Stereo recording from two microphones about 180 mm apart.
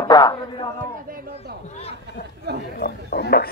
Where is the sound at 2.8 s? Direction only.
60° left (ahead or behind).